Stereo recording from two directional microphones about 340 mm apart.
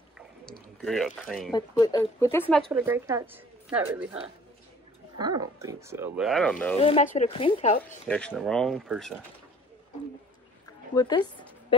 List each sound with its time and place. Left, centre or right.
0.5 s speech: centre
2.7 s a woman's voice: centre
6.8 s speech: centre
8.1 s a woman's voice: centre
11.0 s speech: centre